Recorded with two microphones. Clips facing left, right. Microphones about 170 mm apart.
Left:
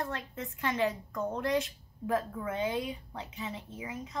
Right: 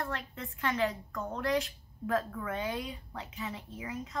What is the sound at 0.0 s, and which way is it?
A woman's voice, 20° left (ahead or behind).